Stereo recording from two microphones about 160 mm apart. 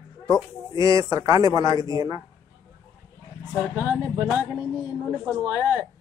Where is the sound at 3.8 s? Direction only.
10° right (ahead or behind).